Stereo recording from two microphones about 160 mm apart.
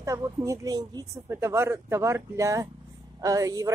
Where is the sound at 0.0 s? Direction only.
20° right (ahead or behind).